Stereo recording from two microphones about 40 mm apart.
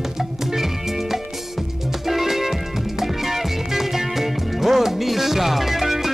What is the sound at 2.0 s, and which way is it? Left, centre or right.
Music, centre.